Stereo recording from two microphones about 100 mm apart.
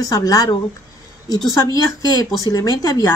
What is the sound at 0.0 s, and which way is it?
Speech, 35° left (ahead or behind).